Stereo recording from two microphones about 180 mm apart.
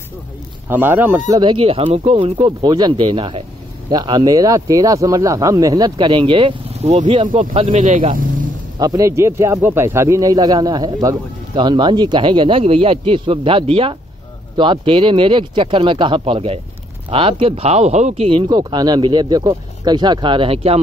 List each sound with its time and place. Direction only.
0.7 s speech: 10° right (ahead or behind)
1.4 s speech: 30° right (ahead or behind)
7.7 s speech: 45° right (ahead or behind)
8.1 s vehicle: 50° right (ahead or behind)
8.7 s speech: 20° right (ahead or behind)